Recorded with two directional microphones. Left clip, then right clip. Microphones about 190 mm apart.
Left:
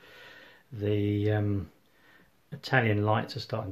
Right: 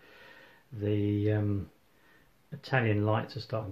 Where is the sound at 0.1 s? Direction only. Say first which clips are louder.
Left 3 dB; 30° left (ahead or behind).